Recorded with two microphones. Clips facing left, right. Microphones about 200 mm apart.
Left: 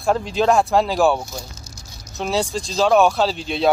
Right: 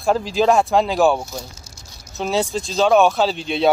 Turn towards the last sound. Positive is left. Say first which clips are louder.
# right 1 dB
turn(degrees=0)  # may be behind; listen again after turning